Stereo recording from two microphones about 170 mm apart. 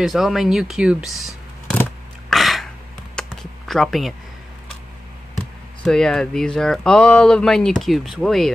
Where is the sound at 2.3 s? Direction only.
Centre (ahead or behind).